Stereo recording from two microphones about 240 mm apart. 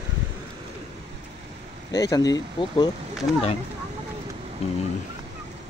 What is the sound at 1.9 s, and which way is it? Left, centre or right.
Speech, centre.